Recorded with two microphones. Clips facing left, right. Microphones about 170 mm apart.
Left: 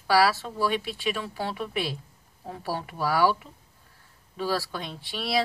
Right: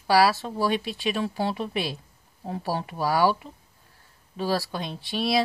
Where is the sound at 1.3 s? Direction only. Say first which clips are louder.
Right 3 dB; 20° right (ahead or behind).